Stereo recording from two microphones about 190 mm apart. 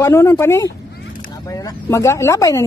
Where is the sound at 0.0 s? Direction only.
15° left (ahead or behind).